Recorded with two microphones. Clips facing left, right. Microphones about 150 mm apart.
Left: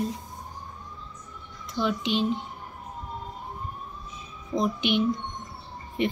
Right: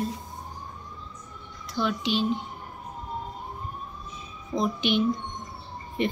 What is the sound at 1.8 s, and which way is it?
Speech, 20° left (ahead or behind).